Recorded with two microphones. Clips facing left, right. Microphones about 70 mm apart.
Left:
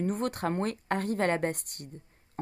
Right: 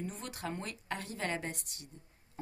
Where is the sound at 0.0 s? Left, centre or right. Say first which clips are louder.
Left 11 dB; left.